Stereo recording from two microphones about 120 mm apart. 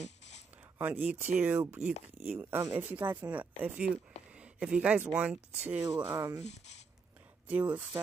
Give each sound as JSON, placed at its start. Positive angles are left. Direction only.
{"t": 0.7, "sound": "speech", "side_deg": -15}
{"t": 6.4, "sound": "speech", "side_deg": 70}
{"t": 7.4, "sound": "speech", "side_deg": -15}